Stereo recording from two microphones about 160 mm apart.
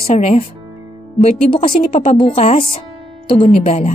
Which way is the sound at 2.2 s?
35° left (ahead or behind).